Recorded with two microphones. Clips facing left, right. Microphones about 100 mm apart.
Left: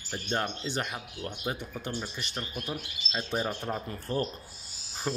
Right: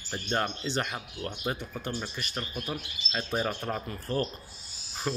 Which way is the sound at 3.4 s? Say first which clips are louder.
Right 1 dB; 5° left (ahead or behind).